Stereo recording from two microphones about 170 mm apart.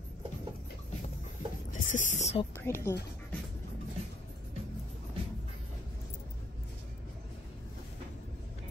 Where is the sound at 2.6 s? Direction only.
15° left (ahead or behind).